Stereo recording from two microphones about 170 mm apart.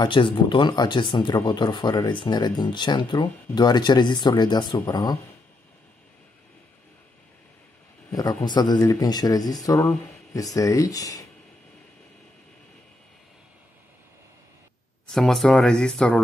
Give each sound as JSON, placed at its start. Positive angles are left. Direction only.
{"t": 0.0, "sound": "speech", "side_deg": 30}
{"t": 8.1, "sound": "a man's voice", "side_deg": 20}
{"t": 15.0, "sound": "speech", "side_deg": 0}